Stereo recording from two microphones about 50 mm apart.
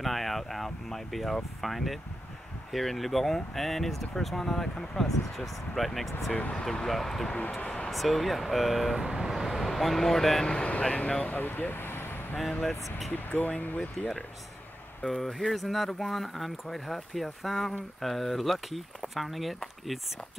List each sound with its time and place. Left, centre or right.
0.0 s vehicle: centre
2.7 s speech: centre
6.3 s speech: left
6.6 s speech: centre
7.5 s a sound: left
7.9 s speech: centre
10.5 s speech: left
11.3 s vehicle: left
12.4 s speech: centre
13.1 s speech: left
15.0 s speech: centre